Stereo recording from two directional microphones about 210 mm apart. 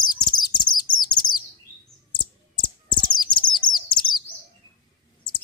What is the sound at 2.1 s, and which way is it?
Bird, 20° left (ahead or behind).